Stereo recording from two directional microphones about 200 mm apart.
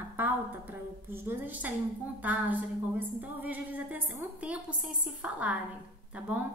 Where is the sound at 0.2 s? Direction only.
10° right (ahead or behind).